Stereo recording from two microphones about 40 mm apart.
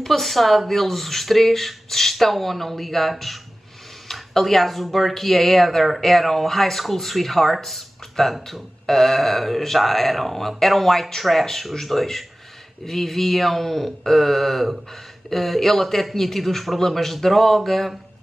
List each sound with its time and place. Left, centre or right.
0.0 s speech: centre